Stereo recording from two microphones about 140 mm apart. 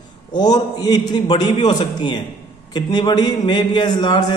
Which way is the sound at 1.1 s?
30° left (ahead or behind).